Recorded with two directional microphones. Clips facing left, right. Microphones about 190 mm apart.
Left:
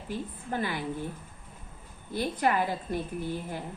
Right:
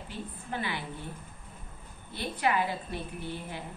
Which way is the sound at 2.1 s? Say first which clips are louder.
Left 2 dB; 45° left (ahead or behind).